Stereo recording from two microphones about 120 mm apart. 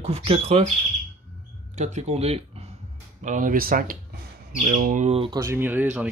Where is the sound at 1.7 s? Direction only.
75° right (ahead or behind); by 2.7 s 60° right (ahead or behind).